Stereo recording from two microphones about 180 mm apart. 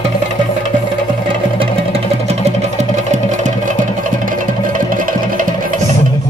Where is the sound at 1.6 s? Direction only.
35° right (ahead or behind); by 5.8 s 50° right (ahead or behind).